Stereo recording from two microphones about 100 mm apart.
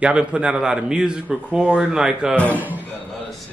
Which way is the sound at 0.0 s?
10° right (ahead or behind).